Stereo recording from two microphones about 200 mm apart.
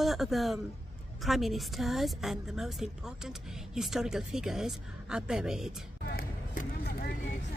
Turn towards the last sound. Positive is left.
turn(degrees=50)  # may be behind; listen again after turning